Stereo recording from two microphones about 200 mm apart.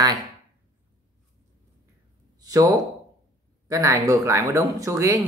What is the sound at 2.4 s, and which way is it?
Speech, 20° right (ahead or behind).